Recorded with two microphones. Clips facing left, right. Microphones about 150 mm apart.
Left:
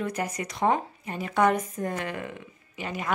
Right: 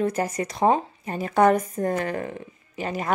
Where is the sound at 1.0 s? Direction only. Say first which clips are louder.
Right 5 dB; 40° right (ahead or behind).